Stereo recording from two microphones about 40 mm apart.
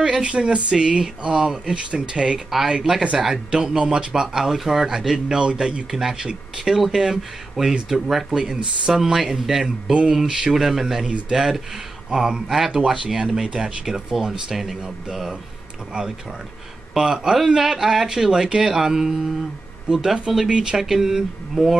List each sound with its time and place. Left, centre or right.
0.2 s speech: right
3.2 s speech: centre
5.9 s speech: centre
8.4 s speech: right
8.9 s speech: centre
11.1 s speech: right
11.3 s speech: centre
16.9 s speech: centre
20.2 s speech: right
20.7 s speech: centre